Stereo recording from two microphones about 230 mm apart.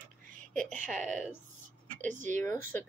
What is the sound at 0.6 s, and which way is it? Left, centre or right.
Speech, right.